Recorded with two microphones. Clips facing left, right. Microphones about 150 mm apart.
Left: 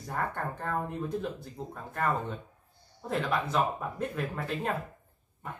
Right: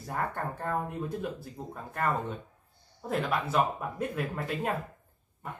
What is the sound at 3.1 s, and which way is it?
Speech, 5° right (ahead or behind).